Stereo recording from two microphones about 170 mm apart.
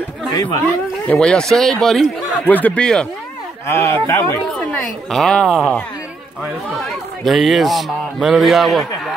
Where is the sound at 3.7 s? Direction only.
15° left (ahead or behind); by 9.2 s centre (ahead or behind).